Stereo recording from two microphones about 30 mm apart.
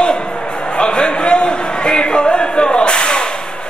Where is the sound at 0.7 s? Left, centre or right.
Left.